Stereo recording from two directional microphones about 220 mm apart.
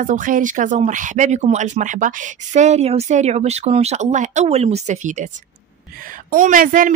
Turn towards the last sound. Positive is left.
turn(degrees=-40)  # may be behind; listen again after turning